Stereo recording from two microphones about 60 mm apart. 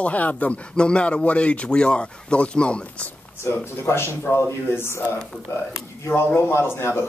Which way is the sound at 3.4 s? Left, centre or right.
Left.